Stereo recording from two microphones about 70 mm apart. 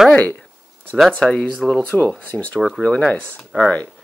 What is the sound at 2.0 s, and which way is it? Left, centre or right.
Speech, centre.